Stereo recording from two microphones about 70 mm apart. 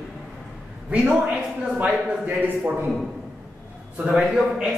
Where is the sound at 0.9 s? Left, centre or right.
Centre.